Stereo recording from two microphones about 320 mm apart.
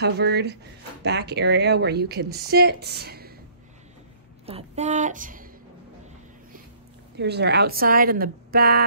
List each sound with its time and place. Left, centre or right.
0.0 s speech: right
4.5 s a woman's voice: centre
7.2 s a woman's voice: right